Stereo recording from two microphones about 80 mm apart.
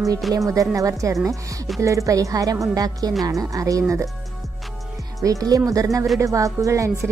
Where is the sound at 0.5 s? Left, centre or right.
Right.